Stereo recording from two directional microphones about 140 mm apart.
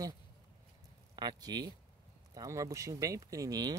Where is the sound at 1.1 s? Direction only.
30° right (ahead or behind).